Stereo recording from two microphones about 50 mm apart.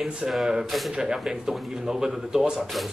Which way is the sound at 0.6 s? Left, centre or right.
Centre.